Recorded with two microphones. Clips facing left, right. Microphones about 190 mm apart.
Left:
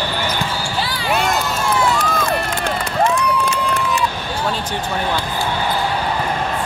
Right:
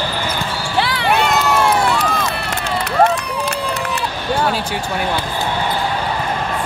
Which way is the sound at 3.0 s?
60° right (ahead or behind).